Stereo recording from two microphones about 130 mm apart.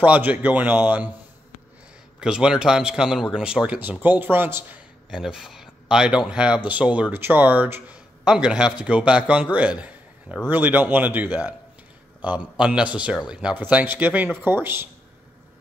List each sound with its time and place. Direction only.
0.0 s speech: 10° right (ahead or behind)
2.1 s a man's voice: 5° right (ahead or behind)
5.1 s speech: 5° right (ahead or behind)
12.3 s speech: 5° right (ahead or behind)